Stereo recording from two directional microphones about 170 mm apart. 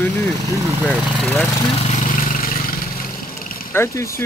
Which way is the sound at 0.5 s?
20° right (ahead or behind).